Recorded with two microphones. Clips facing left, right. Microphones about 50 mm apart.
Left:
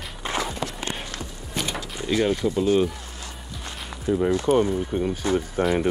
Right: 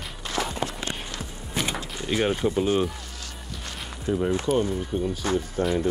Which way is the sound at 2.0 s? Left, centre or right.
Right.